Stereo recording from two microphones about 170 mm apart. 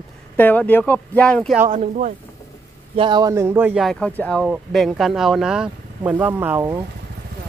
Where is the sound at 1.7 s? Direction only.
45° right (ahead or behind).